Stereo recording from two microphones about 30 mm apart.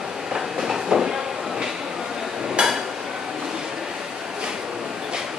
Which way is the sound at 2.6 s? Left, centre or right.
Right.